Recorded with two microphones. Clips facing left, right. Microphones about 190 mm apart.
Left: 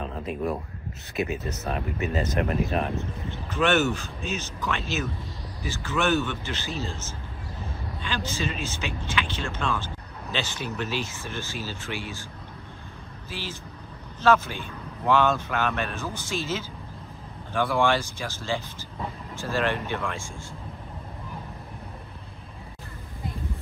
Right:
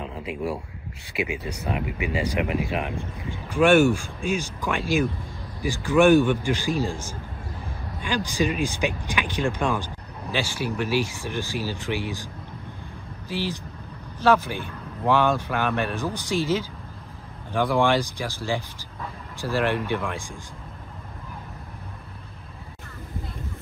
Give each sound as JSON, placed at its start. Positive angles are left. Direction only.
{"t": 0.0, "sound": "a sound", "side_deg": -15}
{"t": 1.1, "sound": "speech", "side_deg": -10}
{"t": 13.3, "sound": "speech", "side_deg": -15}